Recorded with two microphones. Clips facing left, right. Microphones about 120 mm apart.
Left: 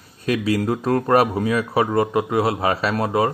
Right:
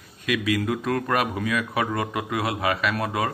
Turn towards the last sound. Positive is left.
turn(degrees=30)  # may be behind; listen again after turning